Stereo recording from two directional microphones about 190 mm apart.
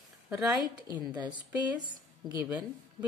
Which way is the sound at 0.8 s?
20° right (ahead or behind).